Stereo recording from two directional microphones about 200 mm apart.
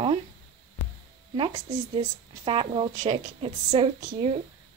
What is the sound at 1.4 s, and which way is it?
A woman's voice, 25° right (ahead or behind).